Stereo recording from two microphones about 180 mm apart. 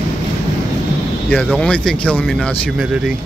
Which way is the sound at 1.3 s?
10° left (ahead or behind).